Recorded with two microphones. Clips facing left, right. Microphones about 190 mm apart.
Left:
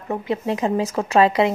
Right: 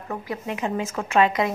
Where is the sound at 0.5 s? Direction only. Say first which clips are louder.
Left 4 dB; 35° left (ahead or behind).